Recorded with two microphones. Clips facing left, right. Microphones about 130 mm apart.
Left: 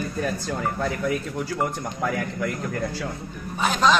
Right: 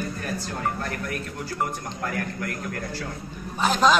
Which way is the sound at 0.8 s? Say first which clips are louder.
Left 6 dB; 90° left.